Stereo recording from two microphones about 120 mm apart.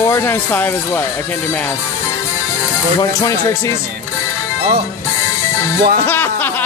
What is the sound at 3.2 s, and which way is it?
Speech, 25° left (ahead or behind).